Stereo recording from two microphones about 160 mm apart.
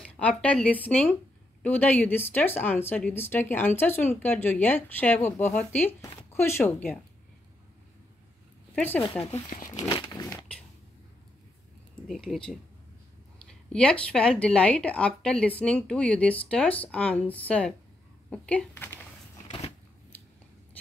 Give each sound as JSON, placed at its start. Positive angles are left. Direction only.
{"t": 0.0, "sound": "speech", "side_deg": 5}
{"t": 8.7, "sound": "speech", "side_deg": 10}
{"t": 9.3, "sound": "speech", "side_deg": 55}
{"t": 9.7, "sound": "a sound", "side_deg": 25}
{"t": 11.9, "sound": "speech", "side_deg": 0}
{"t": 19.4, "sound": "a sound", "side_deg": 40}